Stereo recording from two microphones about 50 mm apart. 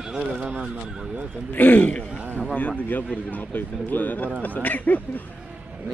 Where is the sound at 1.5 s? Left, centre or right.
Left.